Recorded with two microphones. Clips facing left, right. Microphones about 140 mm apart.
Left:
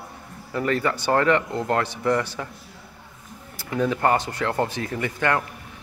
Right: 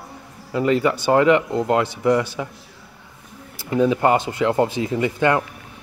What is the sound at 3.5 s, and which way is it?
Speech, 20° right (ahead or behind).